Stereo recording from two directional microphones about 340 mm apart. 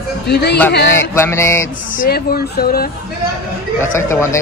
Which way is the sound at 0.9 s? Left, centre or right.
Centre.